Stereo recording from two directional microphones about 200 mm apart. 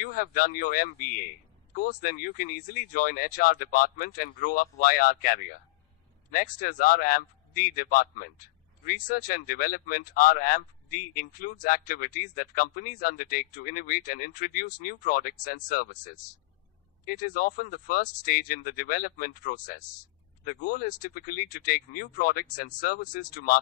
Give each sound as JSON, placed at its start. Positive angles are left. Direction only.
{"t": 0.0, "sound": "a man's voice", "side_deg": 45}